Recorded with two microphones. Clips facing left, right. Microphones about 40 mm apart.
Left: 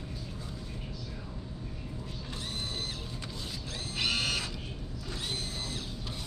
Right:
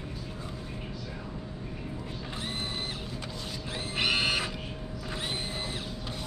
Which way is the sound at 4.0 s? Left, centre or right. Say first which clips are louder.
Right 4 dB; right.